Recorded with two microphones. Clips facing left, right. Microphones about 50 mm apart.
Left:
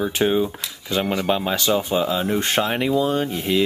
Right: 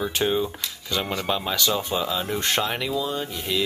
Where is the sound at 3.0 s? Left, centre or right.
Left.